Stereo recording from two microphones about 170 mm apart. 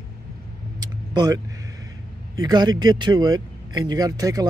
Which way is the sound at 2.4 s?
25° right (ahead or behind).